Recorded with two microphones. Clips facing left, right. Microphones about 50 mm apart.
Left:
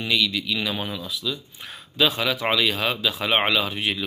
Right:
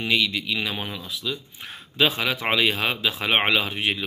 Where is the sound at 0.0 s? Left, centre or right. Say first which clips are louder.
Even; right.